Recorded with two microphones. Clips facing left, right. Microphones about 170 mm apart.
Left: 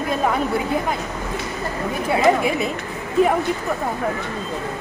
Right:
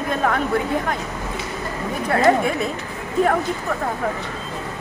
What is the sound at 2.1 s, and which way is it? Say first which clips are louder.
Speech: even; 5° left (ahead or behind).